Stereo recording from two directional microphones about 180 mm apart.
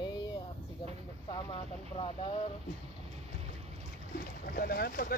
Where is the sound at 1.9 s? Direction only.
25° left (ahead or behind).